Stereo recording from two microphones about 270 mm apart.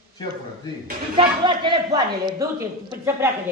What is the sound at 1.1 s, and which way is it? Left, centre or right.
A man's voice, centre.